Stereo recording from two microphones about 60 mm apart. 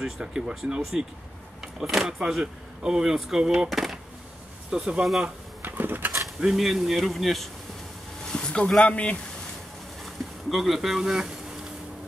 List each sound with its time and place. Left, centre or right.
0.0 s speech: centre
5.6 s a sound: right
6.4 s speech: centre
8.3 s speech: centre
10.5 s speech: centre